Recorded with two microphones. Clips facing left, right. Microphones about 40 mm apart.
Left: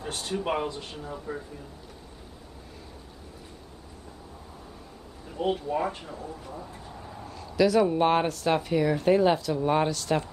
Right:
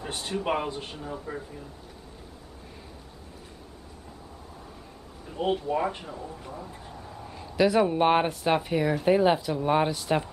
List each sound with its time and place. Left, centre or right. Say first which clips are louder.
0.3 s speech: right 1 dB; centre
0.7 s a man's voice: right 1 dB; right
0.9 s speech: even; centre
5.3 s speech: right 1 dB; right
6.5 s a sound: even; centre
7.2 s speech: even; right